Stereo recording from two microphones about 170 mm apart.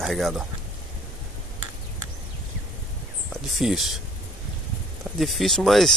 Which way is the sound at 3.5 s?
Centre (ahead or behind).